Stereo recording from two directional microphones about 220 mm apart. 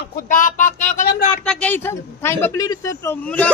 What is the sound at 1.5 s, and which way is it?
A man's voice, 5° left (ahead or behind).